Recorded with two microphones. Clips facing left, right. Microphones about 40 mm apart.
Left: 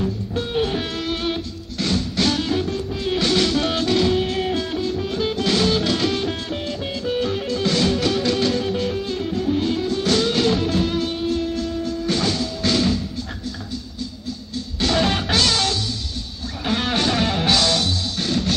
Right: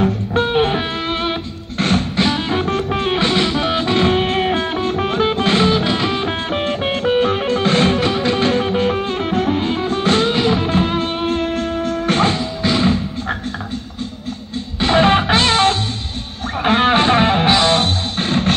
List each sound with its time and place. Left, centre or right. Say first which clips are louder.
0.0 s music: right 8 dB; right
2.1 s music: right 3 dB; right
2.6 s music: right 6 dB; right
3.2 s music: left 1 dB; right
6.5 s music: right 7 dB; right
9.6 s music: right 3 dB; right
12.6 s music: right 4 dB; right
14.8 s music: right 7 dB; right